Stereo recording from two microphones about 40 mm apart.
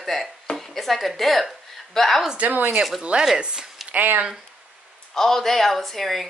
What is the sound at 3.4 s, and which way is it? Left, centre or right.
Speech, centre.